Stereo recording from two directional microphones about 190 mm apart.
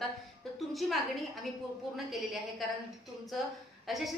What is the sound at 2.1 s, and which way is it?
Speech, centre (ahead or behind).